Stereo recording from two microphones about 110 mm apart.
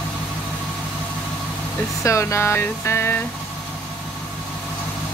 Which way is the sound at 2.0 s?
25° left (ahead or behind).